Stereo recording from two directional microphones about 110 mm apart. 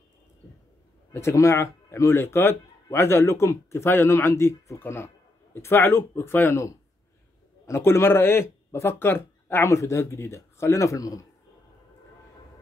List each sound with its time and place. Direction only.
1.1 s a man's voice: 25° left (ahead or behind)